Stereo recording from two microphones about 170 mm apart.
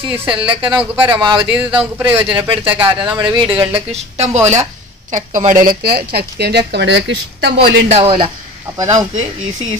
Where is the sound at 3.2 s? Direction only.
30° right (ahead or behind).